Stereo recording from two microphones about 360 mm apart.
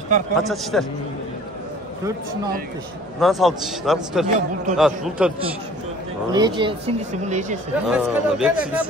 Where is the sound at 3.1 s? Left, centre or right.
Centre.